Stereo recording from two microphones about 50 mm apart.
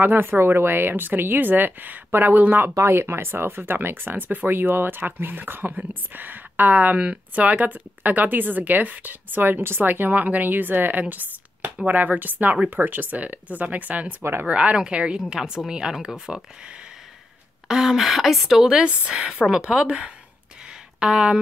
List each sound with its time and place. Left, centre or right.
0.0 s speech: right
2.8 s speech: right; by 16.3 s centre
17.6 s speech: centre
18.6 s speech: centre